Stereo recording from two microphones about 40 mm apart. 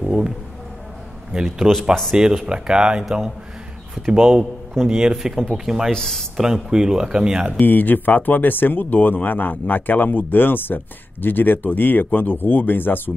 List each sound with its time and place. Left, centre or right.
0.0 s a sound: centre
1.3 s speech: centre
5.1 s speech: centre
5.9 s speech: centre
6.3 s speech: centre
7.6 s speech: left